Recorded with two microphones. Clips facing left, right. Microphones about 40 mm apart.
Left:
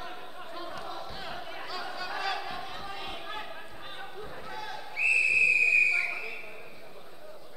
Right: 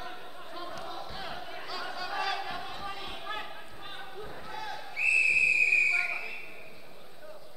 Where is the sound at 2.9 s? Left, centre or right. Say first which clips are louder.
Left 2 dB; centre.